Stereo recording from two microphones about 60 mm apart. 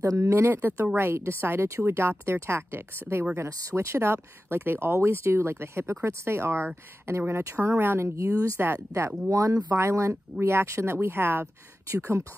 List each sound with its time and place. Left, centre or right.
0.2 s speech: right
8.2 s speech: right
8.7 s speech: right
9.3 s speech: right
9.8 s speech: right
11.9 s speech: right